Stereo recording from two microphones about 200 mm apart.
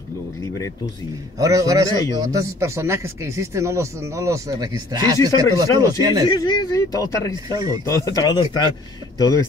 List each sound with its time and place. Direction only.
1.4 s speech: 15° right (ahead or behind)
6.3 s speech: 20° left (ahead or behind)
7.4 s speech: 20° right (ahead or behind)
7.9 s speech: 15° left (ahead or behind)